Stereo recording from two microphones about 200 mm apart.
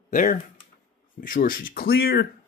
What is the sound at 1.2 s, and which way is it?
Speech, 45° left (ahead or behind).